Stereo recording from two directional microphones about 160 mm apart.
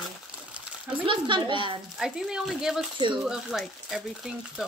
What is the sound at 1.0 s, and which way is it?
Speech, 30° right (ahead or behind).